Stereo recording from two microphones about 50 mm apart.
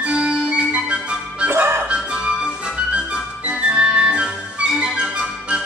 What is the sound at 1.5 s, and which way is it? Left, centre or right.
Music, right.